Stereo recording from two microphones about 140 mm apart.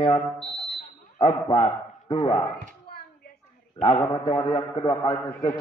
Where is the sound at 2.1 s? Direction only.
25° left (ahead or behind).